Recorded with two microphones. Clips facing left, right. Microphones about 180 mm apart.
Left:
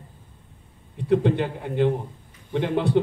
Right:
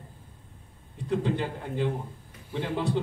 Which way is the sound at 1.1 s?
60° left (ahead or behind).